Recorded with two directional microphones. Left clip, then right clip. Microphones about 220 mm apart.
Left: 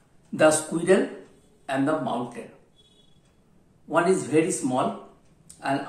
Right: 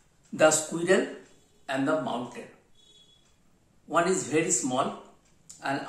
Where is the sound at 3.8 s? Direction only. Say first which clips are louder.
Left 3 dB; 10° right (ahead or behind).